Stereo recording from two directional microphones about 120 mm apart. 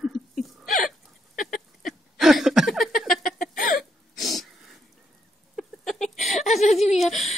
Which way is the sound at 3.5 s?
90° left.